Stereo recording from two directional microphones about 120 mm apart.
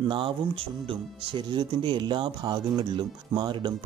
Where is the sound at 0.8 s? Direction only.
45° right (ahead or behind).